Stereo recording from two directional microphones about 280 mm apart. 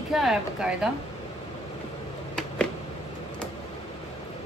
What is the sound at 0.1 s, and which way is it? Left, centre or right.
Speech, centre.